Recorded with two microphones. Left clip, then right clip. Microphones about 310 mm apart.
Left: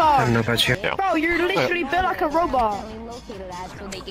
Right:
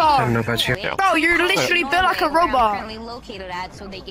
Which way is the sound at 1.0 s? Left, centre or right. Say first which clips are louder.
Right 7 dB; right.